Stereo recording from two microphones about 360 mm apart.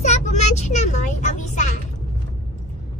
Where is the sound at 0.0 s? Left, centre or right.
Centre.